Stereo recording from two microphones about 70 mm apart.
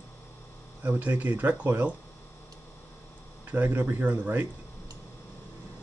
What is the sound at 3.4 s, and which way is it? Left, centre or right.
Speech, right.